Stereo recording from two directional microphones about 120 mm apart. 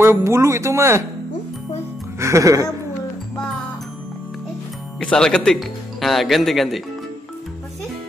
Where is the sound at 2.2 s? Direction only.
25° right (ahead or behind).